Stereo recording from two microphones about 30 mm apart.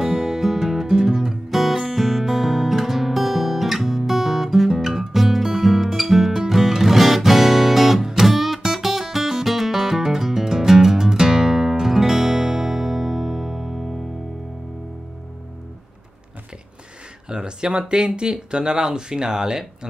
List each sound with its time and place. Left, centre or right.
0.0 s music: centre
2.0 s guitar: centre
4.6 s music: centre
17.3 s speech: right